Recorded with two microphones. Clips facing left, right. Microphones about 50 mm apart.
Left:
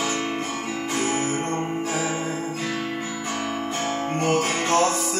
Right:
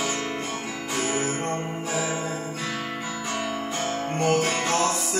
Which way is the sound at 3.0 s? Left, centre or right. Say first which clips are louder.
Left 1 dB; left.